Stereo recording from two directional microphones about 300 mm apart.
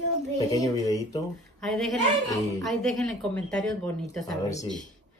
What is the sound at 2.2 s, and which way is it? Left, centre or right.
Speech, centre.